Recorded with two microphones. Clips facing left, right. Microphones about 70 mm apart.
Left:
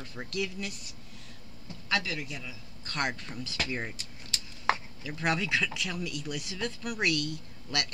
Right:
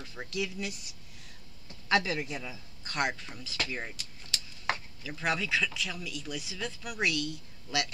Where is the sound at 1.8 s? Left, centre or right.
Right.